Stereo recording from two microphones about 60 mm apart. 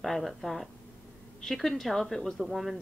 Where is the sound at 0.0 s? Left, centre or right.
Centre.